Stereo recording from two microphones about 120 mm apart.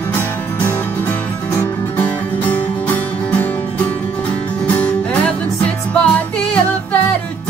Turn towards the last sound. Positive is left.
turn(degrees=15)  # may be behind; listen again after turning